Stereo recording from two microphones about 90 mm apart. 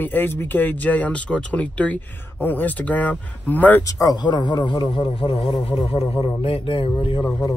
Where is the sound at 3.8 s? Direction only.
45° left (ahead or behind); by 7.2 s 75° left (ahead or behind).